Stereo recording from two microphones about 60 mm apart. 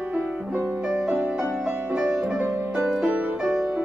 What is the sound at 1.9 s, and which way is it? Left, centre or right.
Music, centre.